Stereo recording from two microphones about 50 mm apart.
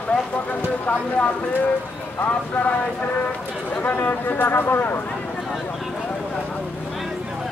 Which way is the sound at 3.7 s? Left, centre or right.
Left.